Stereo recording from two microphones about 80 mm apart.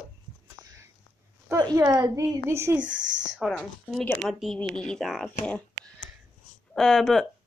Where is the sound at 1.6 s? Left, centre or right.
Right.